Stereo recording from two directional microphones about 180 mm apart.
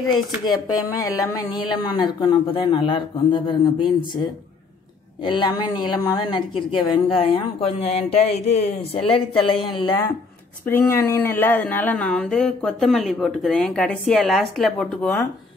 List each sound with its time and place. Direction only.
0.1 s speech: 20° left (ahead or behind)
5.2 s speech: 25° left (ahead or behind)
10.6 s speech: 10° left (ahead or behind)